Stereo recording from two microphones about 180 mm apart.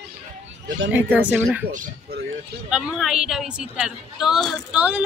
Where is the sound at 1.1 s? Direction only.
10° right (ahead or behind).